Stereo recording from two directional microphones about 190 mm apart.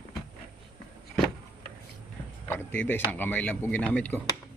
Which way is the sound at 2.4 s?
10° left (ahead or behind).